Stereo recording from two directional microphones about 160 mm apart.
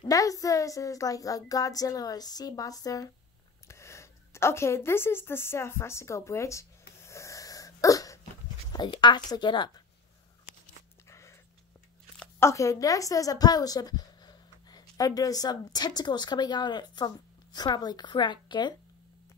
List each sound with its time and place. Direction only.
0.0 s a woman's voice: 20° left (ahead or behind)
7.0 s sneeze: 15° left (ahead or behind)
8.7 s speech: 30° left (ahead or behind)
11.1 s a sound: 15° left (ahead or behind)
12.2 s a woman's voice: 15° left (ahead or behind)